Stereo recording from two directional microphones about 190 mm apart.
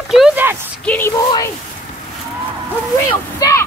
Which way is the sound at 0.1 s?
5° right (ahead or behind).